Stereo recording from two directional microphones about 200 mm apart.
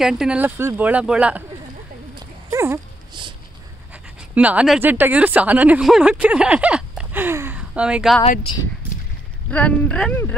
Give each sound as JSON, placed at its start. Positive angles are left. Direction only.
{"t": 0.0, "sound": "speech", "side_deg": -5}
{"t": 2.1, "sound": "a sound", "side_deg": -15}
{"t": 3.9, "sound": "speech", "side_deg": -5}
{"t": 8.2, "sound": "speech", "side_deg": 30}
{"t": 9.5, "sound": "speech", "side_deg": 5}